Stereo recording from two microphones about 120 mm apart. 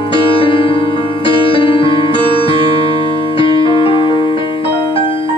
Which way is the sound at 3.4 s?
45° left (ahead or behind).